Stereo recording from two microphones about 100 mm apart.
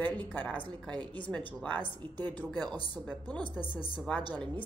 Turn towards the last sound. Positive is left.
turn(degrees=15)  # may be behind; listen again after turning